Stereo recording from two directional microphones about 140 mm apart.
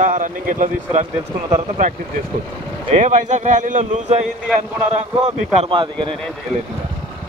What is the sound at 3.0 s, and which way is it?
A man's voice, 60° right (ahead or behind).